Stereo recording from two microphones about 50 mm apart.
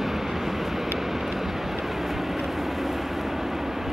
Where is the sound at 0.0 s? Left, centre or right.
Centre.